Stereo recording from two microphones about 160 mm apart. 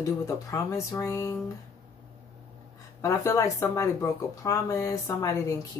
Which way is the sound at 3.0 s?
20° left (ahead or behind).